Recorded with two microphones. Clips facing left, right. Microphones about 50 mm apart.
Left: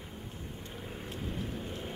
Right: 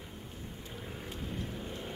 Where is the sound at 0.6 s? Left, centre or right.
Centre.